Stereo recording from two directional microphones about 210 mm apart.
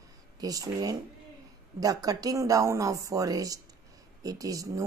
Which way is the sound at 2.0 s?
15° right (ahead or behind).